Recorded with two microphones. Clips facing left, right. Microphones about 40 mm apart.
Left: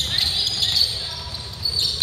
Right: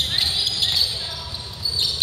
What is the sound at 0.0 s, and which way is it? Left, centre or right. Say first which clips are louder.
Basketball bounce: right 1 dB; centre.